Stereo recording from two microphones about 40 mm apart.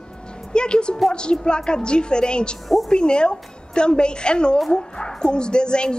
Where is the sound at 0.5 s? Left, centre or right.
Left.